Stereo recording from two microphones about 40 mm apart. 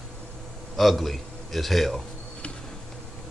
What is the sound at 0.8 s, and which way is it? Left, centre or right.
A man's voice, centre.